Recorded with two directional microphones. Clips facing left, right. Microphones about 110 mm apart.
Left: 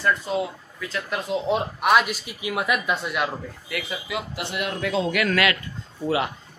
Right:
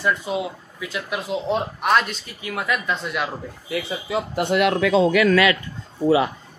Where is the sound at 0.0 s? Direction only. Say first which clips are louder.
Even; 10° right (ahead or behind); by 3.0 s 15° left (ahead or behind).